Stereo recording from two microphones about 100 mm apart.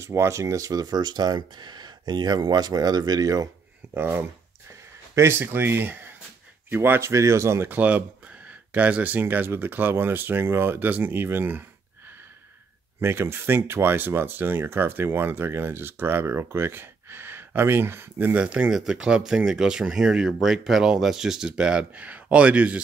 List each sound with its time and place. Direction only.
0.0 s speech: 30° right (ahead or behind)
3.9 s speech: 20° right (ahead or behind)
13.0 s speech: 25° right (ahead or behind)